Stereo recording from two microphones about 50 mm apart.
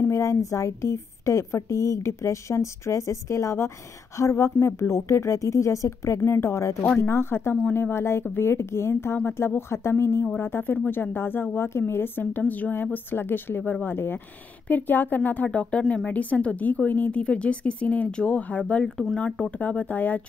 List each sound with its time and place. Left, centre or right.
0.1 s a woman's voice: left
4.2 s a woman's voice: left
6.2 s a woman's voice: left
7.0 s speech: left
9.1 s speech: left
10.4 s a woman's voice: left
13.1 s a woman's voice: left
17.2 s a woman's voice: left